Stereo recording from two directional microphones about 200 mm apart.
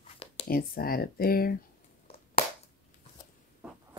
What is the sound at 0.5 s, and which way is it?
Speech, 45° left (ahead or behind).